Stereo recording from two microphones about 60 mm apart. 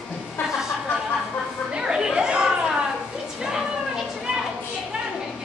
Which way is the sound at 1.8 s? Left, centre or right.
Centre.